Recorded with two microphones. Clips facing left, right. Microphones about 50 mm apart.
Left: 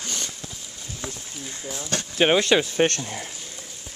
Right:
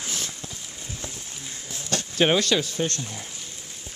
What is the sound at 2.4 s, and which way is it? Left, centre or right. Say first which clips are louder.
Speech: left 5 dB; left.